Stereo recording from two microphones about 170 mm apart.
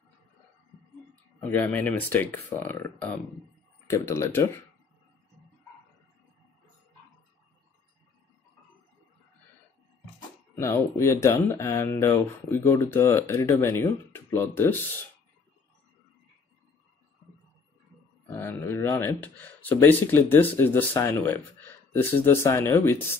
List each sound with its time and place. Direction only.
1.4 s speech: 10° left (ahead or behind)
10.5 s speech: 15° left (ahead or behind)
18.2 s speech: 10° left (ahead or behind)